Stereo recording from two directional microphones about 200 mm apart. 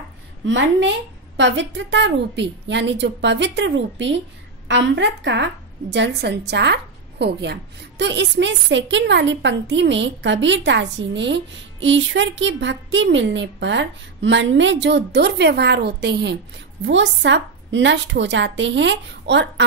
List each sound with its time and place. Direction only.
0.5 s a woman's voice: 65° right (ahead or behind)